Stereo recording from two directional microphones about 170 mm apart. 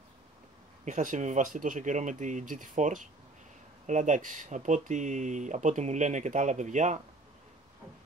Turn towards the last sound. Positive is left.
turn(degrees=-45)  # may be behind; listen again after turning